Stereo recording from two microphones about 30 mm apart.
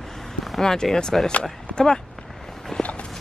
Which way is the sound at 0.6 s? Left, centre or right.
Centre.